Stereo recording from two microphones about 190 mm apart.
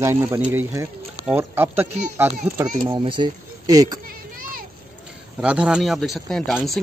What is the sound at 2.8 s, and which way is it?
Speech, 25° right (ahead or behind).